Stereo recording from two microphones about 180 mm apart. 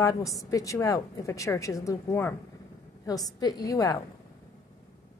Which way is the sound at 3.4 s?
20° left (ahead or behind).